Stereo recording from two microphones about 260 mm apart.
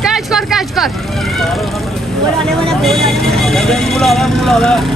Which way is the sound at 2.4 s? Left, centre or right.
Centre.